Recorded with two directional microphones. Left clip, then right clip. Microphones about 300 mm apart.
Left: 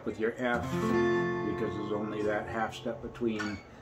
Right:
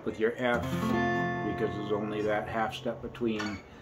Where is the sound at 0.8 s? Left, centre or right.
Centre.